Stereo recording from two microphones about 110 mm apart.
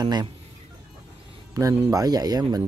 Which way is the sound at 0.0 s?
40° right (ahead or behind).